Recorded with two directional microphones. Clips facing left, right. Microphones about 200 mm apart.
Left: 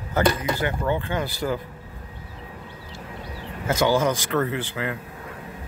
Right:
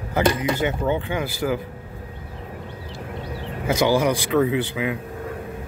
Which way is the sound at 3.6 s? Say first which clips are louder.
Right 2 dB; 15° right (ahead or behind).